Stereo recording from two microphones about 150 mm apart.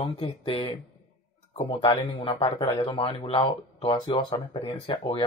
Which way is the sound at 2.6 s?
25° left (ahead or behind).